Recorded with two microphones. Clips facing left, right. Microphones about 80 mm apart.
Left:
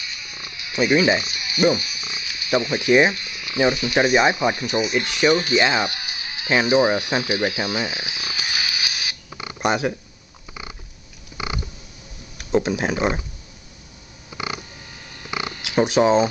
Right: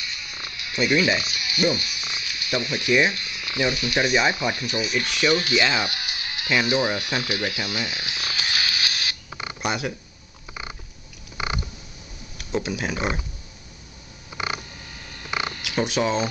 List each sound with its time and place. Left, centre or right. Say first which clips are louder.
0.3 s electric shaver: even; centre
2.2 s speech: left 6 dB; left
3.3 s frying: left 5 dB; centre
4.1 s speech: left 4 dB; centre
5.8 s music: left 3 dB; centre
6.5 s speech: left 5 dB; centre
9.6 s speech: left 6 dB; left
12.4 s speech: left 6 dB; left
15.0 s a sound: even; centre